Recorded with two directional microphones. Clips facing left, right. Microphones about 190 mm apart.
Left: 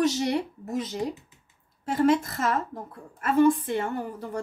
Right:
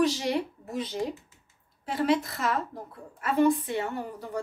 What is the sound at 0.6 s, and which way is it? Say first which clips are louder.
A woman's voice: left 2 dB; 45° left (ahead or behind).